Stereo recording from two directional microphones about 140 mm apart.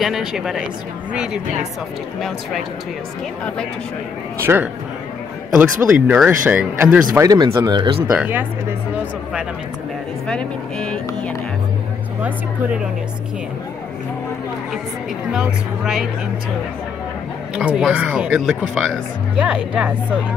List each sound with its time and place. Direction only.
0.0 s speech: 5° right (ahead or behind)
4.4 s speech: 15° right (ahead or behind)
7.2 s speech: 25° right (ahead or behind)
8.1 s speech: 15° right (ahead or behind)
10.2 s speech: 5° left (ahead or behind)
15.3 s speech: 5° right (ahead or behind)
17.6 s speech: 5° right (ahead or behind)